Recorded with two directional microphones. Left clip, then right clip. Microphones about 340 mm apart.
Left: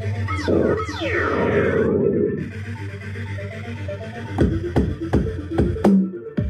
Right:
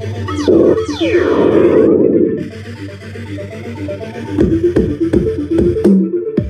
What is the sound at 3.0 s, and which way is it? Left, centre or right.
Music, right.